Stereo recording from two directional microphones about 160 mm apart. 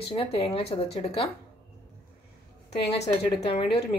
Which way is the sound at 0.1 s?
35° left (ahead or behind).